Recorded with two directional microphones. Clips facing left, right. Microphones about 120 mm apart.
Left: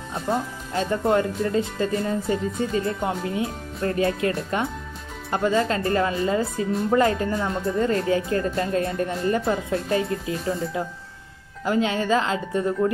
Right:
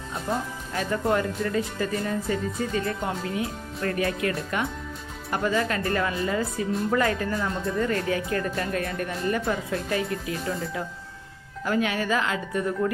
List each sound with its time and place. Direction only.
0.1 s speech: 25° left (ahead or behind)
11.6 s speech: 25° left (ahead or behind)